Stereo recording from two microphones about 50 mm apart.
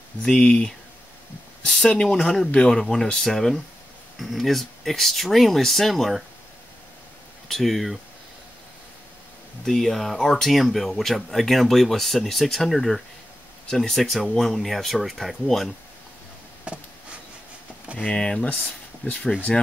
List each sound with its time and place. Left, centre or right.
0.2 s speech: centre
7.4 s speech: centre
9.7 s speech: centre
16.7 s a sound: right
18.0 s speech: centre
19.0 s speech: left
19.5 s speech: centre